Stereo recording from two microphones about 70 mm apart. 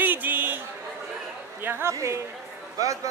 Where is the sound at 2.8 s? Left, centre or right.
Right.